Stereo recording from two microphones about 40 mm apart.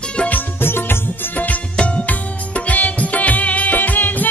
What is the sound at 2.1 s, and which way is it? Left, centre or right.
Music, left.